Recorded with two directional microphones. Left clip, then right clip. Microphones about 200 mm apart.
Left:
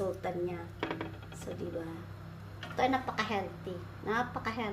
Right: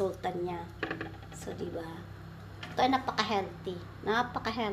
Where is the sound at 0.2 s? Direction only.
20° right (ahead or behind).